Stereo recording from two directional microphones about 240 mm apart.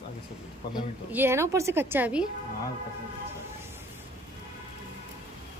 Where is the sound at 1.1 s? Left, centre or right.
Centre.